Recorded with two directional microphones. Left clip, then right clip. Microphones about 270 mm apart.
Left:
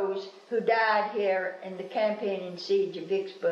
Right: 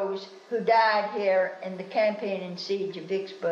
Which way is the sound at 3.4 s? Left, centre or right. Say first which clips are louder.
Even; right.